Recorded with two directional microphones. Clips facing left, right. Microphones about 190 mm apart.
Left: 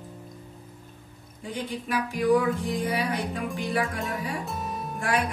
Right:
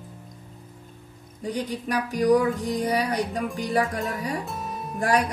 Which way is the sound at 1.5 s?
40° right (ahead or behind).